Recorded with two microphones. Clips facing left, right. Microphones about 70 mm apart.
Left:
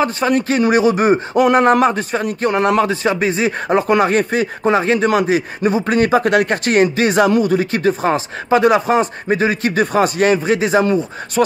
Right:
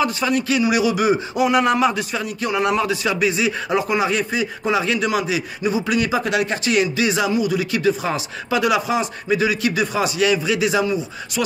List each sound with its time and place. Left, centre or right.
0.0 s a man's voice: left